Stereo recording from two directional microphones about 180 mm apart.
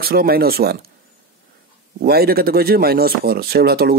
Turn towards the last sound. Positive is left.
turn(degrees=-60)  # may be behind; listen again after turning